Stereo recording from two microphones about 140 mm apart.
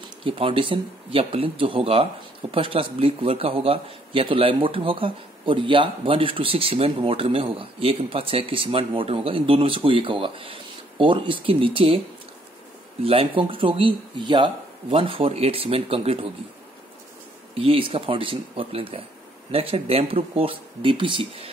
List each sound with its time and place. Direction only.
0.2 s speech: 40° right (ahead or behind)
13.0 s speech: 40° right (ahead or behind)
17.6 s speech: 40° right (ahead or behind)